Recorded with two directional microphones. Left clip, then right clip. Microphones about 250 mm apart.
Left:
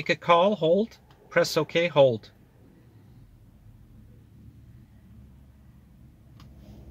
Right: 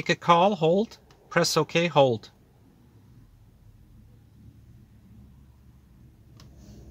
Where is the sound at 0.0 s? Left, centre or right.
Right.